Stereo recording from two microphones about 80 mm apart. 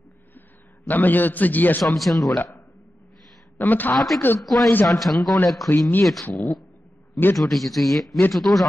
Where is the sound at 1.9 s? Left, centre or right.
Centre.